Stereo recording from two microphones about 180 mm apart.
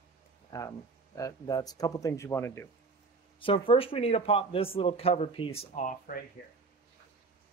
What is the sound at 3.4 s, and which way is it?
A man's voice, 30° left (ahead or behind).